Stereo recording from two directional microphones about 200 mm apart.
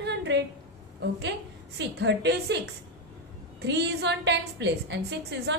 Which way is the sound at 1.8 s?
60° right (ahead or behind).